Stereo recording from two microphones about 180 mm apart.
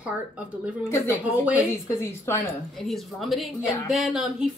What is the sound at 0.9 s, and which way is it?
A woman's voice, 15° left (ahead or behind).